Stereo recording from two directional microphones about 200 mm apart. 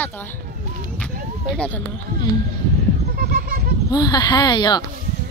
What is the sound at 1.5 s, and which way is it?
Speech, 5° left (ahead or behind).